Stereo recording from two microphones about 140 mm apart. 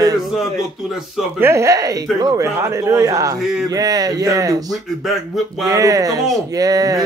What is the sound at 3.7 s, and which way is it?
Speech, 25° right (ahead or behind).